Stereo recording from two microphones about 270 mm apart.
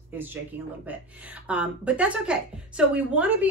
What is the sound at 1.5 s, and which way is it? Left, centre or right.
Speech, centre.